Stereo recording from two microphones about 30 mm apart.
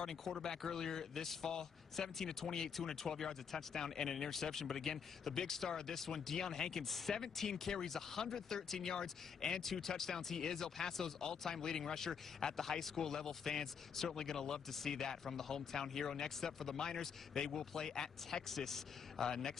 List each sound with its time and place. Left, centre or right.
0.0 s speech: centre
16.7 s speech: left